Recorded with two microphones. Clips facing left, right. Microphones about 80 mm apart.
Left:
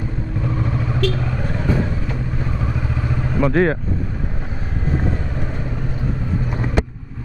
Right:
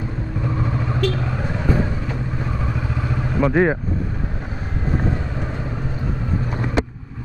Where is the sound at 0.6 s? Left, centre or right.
Centre.